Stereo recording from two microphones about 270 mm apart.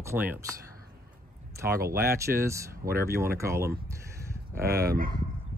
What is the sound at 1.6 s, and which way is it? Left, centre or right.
Speech, centre.